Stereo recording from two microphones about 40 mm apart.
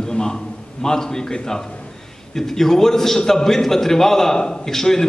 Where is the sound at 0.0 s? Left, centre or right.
Centre.